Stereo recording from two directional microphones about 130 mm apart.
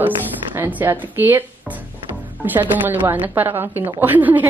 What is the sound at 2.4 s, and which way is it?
Speech, 15° right (ahead or behind).